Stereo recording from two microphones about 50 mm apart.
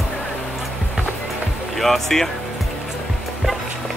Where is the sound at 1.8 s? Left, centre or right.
Centre.